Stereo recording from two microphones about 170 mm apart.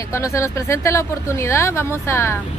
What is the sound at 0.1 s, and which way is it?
Speech, 15° left (ahead or behind).